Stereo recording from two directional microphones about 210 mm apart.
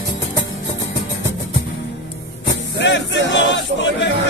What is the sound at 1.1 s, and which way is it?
Music, 60° left (ahead or behind).